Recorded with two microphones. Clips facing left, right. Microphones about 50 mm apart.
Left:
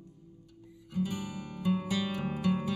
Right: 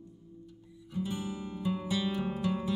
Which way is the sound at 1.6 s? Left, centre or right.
Left.